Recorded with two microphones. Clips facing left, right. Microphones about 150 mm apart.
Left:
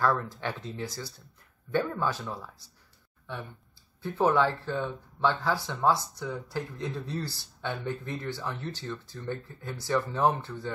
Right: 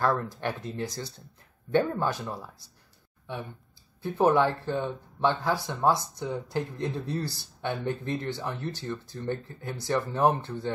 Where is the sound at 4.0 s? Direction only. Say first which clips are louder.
Right 2 dB; 15° right (ahead or behind).